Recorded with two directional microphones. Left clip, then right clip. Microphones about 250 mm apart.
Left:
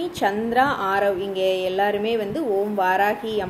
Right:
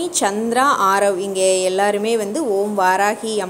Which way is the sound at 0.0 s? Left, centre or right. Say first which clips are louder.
Right 3 dB; centre.